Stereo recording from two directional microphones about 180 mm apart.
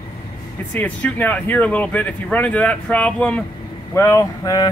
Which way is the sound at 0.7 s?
10° left (ahead or behind).